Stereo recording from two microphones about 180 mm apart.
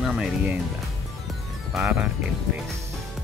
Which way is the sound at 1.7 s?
5° right (ahead or behind).